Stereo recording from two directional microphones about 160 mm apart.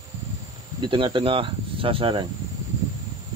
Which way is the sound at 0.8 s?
30° right (ahead or behind).